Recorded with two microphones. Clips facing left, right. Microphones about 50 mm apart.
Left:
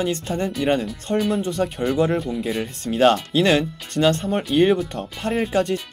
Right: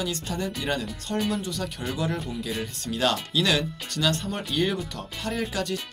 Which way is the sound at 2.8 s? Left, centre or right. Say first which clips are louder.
Left 9 dB; left.